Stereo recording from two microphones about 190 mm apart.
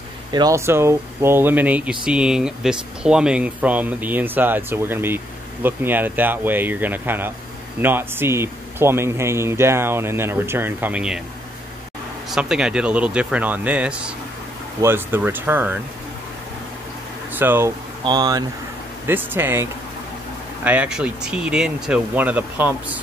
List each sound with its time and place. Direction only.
0.3 s speech: 20° right (ahead or behind)
12.3 s speech: 5° right (ahead or behind)
17.3 s speech: 10° right (ahead or behind)